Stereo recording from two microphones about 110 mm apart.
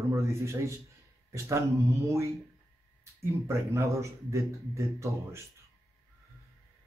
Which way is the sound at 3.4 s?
25° right (ahead or behind).